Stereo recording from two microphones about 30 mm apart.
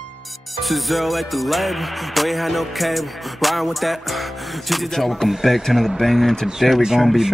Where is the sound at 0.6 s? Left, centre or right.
Centre.